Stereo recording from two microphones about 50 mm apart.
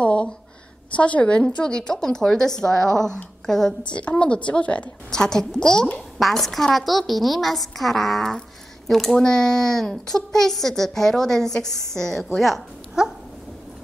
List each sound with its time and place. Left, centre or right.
0.0 s a sound: left
0.9 s speech: left; by 3.7 s centre
3.8 s a woman's voice: left
5.1 s speech: centre
6.1 s a woman's voice: centre
13.0 s dog: centre